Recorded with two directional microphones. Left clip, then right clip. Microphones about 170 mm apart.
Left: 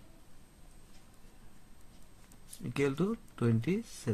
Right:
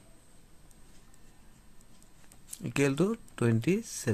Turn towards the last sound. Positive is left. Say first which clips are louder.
# right 5 dB
turn(degrees=-45)  # may be behind; listen again after turning